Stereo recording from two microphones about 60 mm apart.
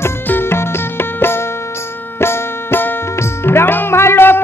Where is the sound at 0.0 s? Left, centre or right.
Left.